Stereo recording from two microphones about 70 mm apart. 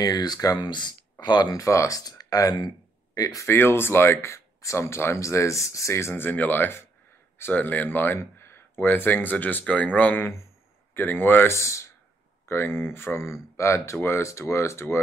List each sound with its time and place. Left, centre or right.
0.0 s speech: left
1.6 s speech: left
3.4 s speech: left
6.2 s speech: left
11.5 s speech: left
12.4 s speech: left